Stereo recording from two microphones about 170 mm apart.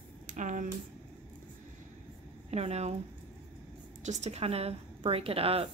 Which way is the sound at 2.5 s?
40° right (ahead or behind).